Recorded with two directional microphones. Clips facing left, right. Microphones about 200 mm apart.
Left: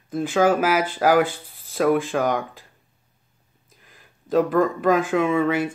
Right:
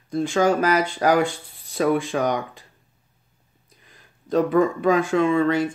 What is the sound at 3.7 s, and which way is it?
Speech, centre (ahead or behind).